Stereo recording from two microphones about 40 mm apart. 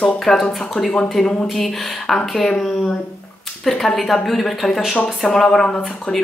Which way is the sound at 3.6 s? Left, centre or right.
Centre.